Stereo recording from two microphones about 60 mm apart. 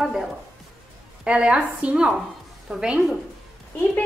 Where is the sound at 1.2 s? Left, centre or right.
Centre.